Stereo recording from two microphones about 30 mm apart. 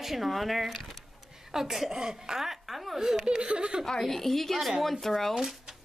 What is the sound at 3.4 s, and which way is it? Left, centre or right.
Speech, right.